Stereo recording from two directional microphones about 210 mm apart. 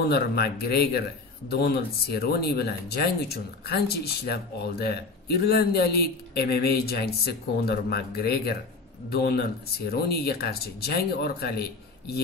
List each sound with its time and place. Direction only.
0.1 s speech: 50° left (ahead or behind)